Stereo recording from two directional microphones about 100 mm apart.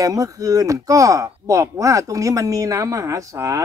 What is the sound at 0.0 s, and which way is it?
Speech, 35° right (ahead or behind).